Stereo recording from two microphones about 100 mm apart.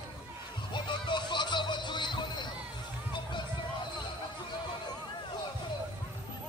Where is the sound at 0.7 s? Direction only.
50° left (ahead or behind).